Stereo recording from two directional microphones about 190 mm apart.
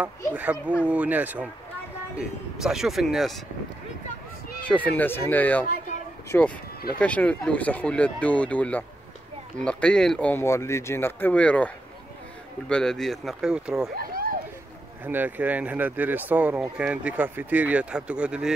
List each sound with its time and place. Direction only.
0.0 s speech: 10° right (ahead or behind)
2.6 s speech: centre (ahead or behind)
4.6 s speech: 10° left (ahead or behind)
13.9 s a sound: 50° right (ahead or behind)
15.0 s speech: 10° right (ahead or behind)